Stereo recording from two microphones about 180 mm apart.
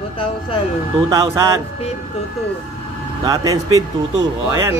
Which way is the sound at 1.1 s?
20° right (ahead or behind).